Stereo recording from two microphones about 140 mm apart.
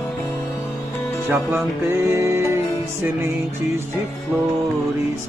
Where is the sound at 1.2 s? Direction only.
15° right (ahead or behind).